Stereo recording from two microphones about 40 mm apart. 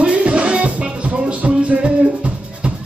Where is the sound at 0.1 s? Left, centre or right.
Right.